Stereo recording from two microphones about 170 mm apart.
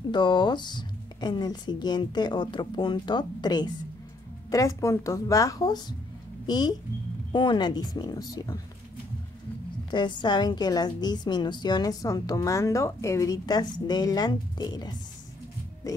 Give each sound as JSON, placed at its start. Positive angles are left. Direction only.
{"t": 0.1, "sound": "a woman's voice", "side_deg": 25}
{"t": 9.8, "sound": "a woman's voice", "side_deg": 25}